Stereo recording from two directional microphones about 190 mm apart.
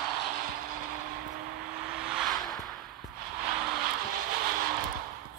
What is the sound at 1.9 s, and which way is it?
Vehicle, 5° right (ahead or behind).